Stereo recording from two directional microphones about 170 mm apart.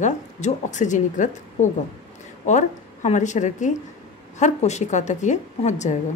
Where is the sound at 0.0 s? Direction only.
45° left (ahead or behind).